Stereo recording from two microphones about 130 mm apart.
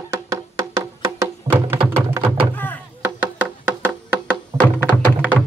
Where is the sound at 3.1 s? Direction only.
10° right (ahead or behind).